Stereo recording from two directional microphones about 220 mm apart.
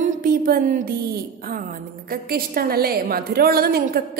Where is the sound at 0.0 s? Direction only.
40° right (ahead or behind).